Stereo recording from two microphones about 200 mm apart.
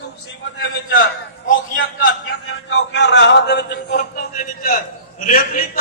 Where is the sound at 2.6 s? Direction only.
65° left (ahead or behind).